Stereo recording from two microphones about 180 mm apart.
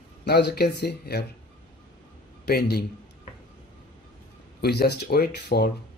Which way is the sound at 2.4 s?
60° left (ahead or behind).